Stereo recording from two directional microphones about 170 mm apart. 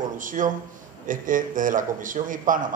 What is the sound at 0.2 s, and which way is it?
Speech, 50° right (ahead or behind).